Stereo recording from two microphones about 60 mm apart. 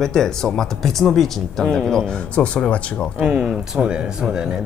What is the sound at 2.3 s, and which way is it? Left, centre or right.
Speech, centre.